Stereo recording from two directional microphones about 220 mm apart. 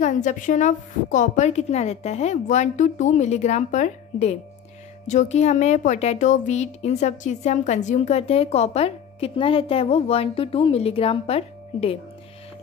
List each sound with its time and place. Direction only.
0.0 s a woman's voice: 35° left (ahead or behind)